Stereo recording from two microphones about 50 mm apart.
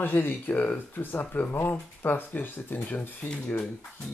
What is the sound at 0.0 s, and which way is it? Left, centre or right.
Speech, left.